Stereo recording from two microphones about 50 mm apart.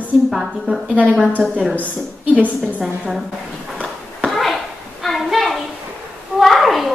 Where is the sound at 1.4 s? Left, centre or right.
Centre.